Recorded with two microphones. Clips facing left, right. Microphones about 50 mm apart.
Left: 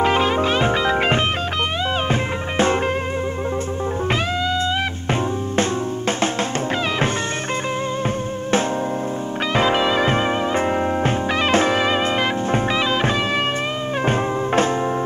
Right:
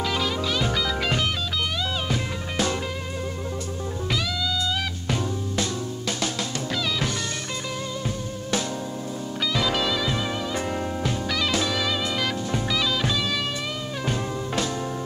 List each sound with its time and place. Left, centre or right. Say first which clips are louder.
0.0 s music: left 8 dB; left
9.5 s music: left 7 dB; left